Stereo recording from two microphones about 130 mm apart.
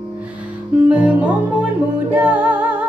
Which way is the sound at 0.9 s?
10° right (ahead or behind).